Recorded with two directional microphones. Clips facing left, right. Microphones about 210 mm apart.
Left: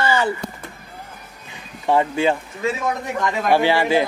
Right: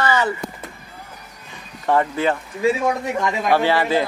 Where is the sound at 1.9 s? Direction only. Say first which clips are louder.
Left 1 dB; 15° left (ahead or behind).